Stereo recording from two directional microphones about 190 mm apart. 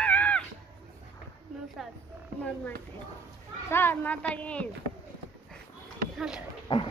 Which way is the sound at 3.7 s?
10° left (ahead or behind).